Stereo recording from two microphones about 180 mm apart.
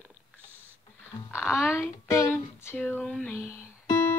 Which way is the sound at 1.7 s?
15° left (ahead or behind).